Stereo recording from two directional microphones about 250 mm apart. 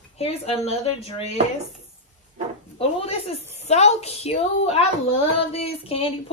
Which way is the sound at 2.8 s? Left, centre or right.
Left.